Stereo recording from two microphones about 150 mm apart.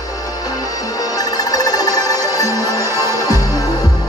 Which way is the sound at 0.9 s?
25° left (ahead or behind).